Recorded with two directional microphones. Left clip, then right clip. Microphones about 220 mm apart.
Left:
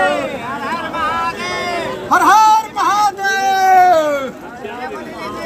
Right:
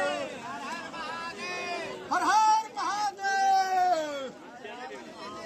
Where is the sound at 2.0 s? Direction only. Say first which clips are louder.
Left 14 dB; 10° left (ahead or behind).